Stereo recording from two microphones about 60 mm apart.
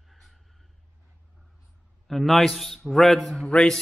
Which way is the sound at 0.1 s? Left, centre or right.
Centre.